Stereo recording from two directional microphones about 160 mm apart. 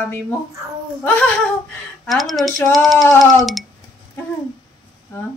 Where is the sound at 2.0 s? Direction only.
Centre (ahead or behind).